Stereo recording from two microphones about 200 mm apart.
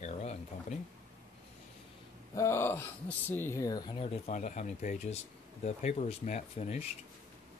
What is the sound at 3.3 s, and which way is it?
Speech, 10° left (ahead or behind).